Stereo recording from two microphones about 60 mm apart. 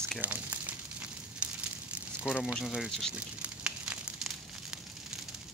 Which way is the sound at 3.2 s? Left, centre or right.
Centre.